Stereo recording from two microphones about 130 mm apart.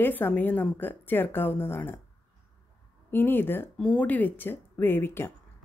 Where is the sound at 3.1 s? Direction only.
15° left (ahead or behind).